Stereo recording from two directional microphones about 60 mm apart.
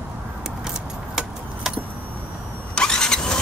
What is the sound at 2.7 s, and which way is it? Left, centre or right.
Vehicle, centre.